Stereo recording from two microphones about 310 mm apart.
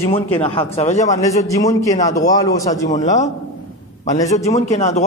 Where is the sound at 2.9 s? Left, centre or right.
Left.